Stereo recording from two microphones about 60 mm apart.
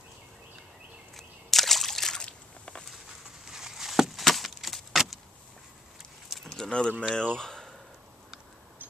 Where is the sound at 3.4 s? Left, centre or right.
Centre.